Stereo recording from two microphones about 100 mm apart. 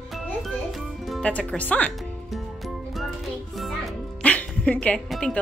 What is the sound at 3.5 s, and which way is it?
Music, centre (ahead or behind).